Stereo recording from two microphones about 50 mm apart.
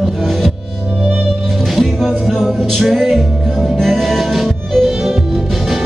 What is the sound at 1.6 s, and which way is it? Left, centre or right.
Music, centre.